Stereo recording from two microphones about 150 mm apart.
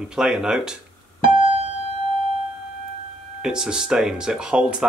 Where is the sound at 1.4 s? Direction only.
40° right (ahead or behind).